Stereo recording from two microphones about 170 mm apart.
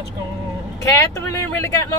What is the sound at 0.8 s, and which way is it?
Speech, 20° left (ahead or behind).